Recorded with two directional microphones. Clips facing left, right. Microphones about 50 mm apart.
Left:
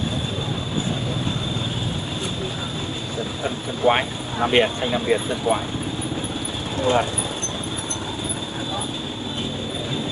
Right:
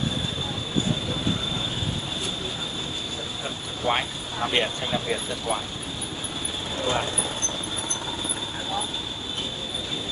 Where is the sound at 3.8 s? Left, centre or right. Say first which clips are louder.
Left 6 dB; left.